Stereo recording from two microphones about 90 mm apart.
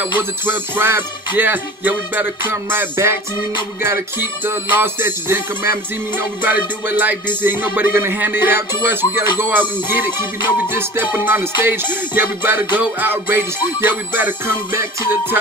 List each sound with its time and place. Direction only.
0.5 s music: 25° right (ahead or behind)
4.5 s music: 25° right (ahead or behind)
6.4 s music: 20° right (ahead or behind)